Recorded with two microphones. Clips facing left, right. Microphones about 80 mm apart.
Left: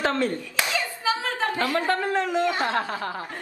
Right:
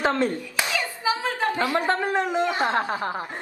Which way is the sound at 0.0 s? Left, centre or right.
Right.